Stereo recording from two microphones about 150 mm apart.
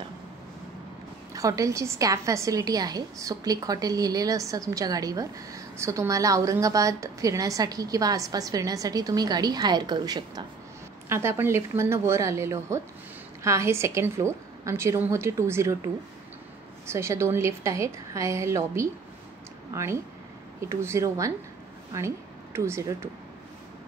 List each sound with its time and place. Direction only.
1.3 s a woman's voice: 20° right (ahead or behind)
16.9 s a woman's voice: 20° right (ahead or behind)